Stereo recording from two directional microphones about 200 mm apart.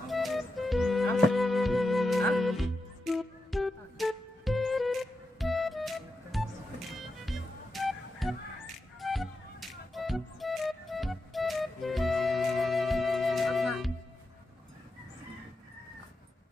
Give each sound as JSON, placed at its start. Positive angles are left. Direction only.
{"t": 0.1, "sound": "music", "side_deg": 0}